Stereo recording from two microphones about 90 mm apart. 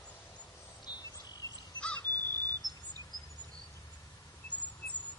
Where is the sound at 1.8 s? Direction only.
10° left (ahead or behind).